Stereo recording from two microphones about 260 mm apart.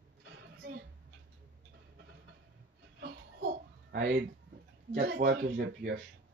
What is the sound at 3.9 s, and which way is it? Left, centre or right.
Speech, right.